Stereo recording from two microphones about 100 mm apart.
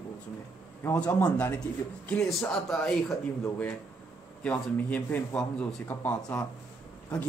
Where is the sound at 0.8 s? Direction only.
15° left (ahead or behind).